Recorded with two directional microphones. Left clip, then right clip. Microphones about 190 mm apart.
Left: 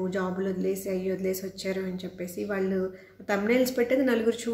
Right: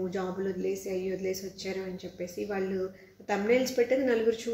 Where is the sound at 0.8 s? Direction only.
15° left (ahead or behind).